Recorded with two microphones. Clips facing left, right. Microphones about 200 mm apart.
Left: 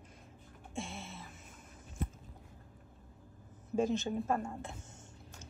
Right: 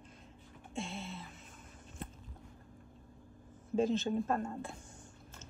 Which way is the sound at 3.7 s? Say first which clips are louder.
Right 1 dB; 10° left (ahead or behind).